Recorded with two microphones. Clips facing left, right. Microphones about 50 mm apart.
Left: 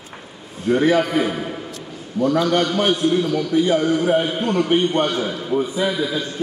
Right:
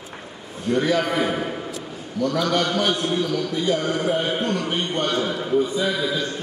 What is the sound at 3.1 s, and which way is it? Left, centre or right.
A man's voice, centre.